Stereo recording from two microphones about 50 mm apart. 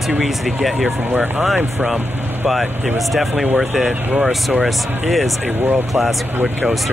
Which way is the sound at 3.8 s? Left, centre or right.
Right.